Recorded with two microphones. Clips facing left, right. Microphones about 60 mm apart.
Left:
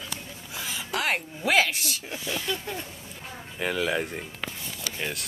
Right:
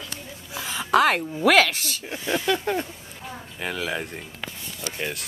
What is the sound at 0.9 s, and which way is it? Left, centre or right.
Speech, right.